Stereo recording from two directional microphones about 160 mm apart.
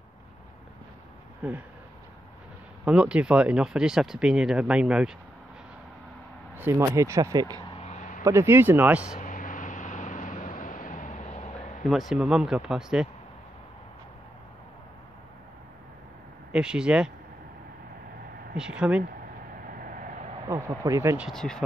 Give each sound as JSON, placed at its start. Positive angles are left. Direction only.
{"t": 1.4, "sound": "speech", "side_deg": -5}
{"t": 2.8, "sound": "speech", "side_deg": -5}
{"t": 6.5, "sound": "speech", "side_deg": -15}
{"t": 7.6, "sound": "a sound", "side_deg": 40}
{"t": 8.2, "sound": "speech", "side_deg": -15}
{"t": 9.2, "sound": "vehicle", "side_deg": 55}
{"t": 12.1, "sound": "speech", "side_deg": -5}
{"t": 16.5, "sound": "speech", "side_deg": -5}
{"t": 18.6, "sound": "speech", "side_deg": -5}
{"t": 19.6, "sound": "vehicle", "side_deg": -60}
{"t": 20.4, "sound": "speech", "side_deg": -20}
{"t": 21.2, "sound": "speech", "side_deg": 5}